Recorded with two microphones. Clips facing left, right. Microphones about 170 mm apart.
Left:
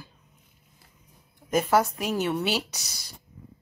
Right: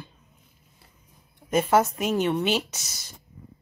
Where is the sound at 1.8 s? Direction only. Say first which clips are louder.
Right 3 dB; centre (ahead or behind).